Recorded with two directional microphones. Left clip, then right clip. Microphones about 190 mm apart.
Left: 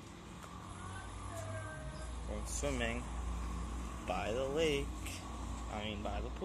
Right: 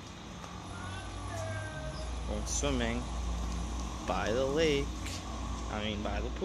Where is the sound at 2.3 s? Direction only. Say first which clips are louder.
Right 6 dB; 10° right (ahead or behind).